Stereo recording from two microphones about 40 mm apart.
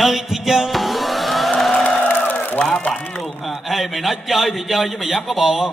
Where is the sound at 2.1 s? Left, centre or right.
Left.